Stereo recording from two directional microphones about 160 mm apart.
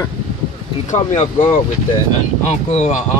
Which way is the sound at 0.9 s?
50° left (ahead or behind).